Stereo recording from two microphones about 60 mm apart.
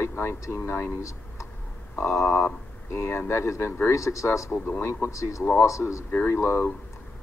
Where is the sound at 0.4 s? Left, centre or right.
Left.